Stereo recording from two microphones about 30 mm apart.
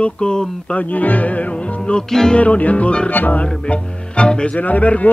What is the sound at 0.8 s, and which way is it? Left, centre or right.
Speech, left.